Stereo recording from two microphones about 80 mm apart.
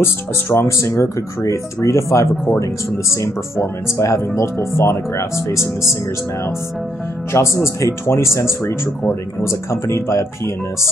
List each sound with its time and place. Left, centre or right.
0.0 s speech: left
7.3 s speech: left